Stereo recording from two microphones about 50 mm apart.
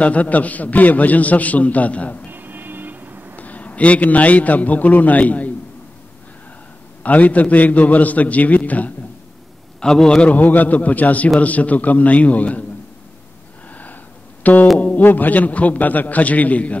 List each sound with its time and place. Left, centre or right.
0.0 s a man's voice: left
2.3 s vehicle: right
3.3 s a man's voice: left
7.0 s a man's voice: left
9.8 s a man's voice: centre
10.3 s a man's voice: left
14.4 s music: left
15.0 s a man's voice: left